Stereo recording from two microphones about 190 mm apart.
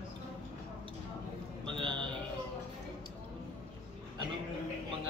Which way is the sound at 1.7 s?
25° right (ahead or behind).